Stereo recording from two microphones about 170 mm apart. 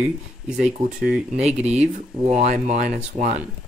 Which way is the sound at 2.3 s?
45° right (ahead or behind).